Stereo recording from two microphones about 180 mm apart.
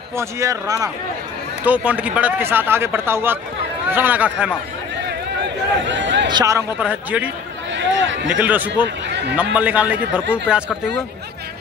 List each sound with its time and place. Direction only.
0.1 s speech: 15° right (ahead or behind)
1.7 s speech: 5° right (ahead or behind)
5.9 s speech: 90° right
6.2 s speech: 20° right (ahead or behind)
7.7 s a sound: 90° right
8.4 s speech: 10° right (ahead or behind)